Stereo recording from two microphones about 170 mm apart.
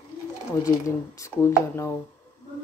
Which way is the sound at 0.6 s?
20° left (ahead or behind).